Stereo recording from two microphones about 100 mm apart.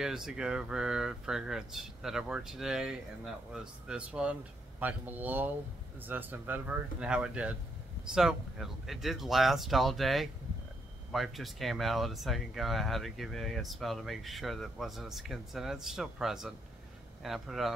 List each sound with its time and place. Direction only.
0.0 s speech: 5° right (ahead or behind)
7.0 s speech: 10° right (ahead or behind)